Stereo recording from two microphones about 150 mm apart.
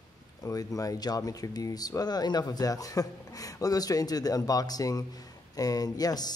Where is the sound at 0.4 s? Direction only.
25° left (ahead or behind).